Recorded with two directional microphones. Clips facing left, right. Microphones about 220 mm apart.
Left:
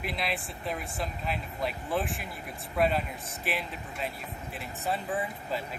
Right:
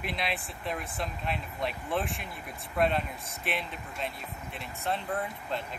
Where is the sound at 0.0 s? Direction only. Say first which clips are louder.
Left 1 dB; centre (ahead or behind).